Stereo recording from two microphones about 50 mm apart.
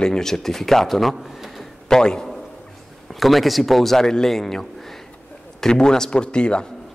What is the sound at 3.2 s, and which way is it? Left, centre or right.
Speech, centre.